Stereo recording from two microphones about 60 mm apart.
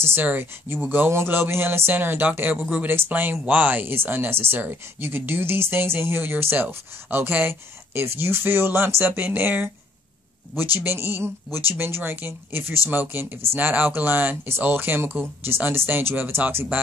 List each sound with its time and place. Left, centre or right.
0.0 s speech: right